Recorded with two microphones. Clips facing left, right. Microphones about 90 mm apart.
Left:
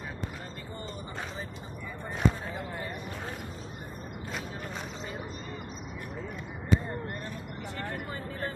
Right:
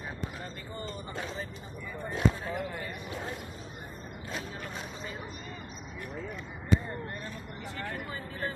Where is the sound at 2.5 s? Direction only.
25° left (ahead or behind).